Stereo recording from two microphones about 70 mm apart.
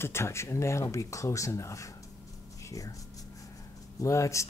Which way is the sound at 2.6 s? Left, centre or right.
Left.